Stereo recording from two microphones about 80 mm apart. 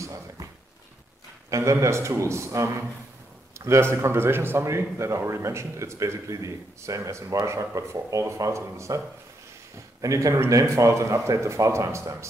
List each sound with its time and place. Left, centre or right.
0.0 s a sound: right
1.5 s speech: right
10.0 s speech: right